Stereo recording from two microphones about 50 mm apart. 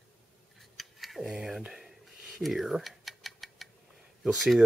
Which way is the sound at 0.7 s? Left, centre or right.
Centre.